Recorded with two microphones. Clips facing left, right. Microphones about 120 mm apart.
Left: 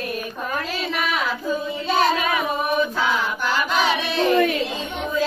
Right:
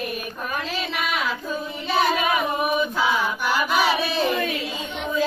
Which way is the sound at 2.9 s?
10° right (ahead or behind).